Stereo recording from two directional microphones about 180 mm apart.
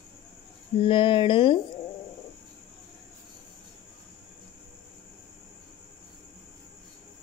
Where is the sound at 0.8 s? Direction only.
30° left (ahead or behind).